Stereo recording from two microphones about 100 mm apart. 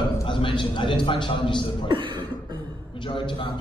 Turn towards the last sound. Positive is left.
turn(degrees=55)  # may be behind; listen again after turning